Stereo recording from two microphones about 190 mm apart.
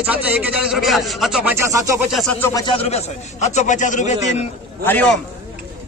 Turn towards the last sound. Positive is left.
turn(degrees=10)  # may be behind; listen again after turning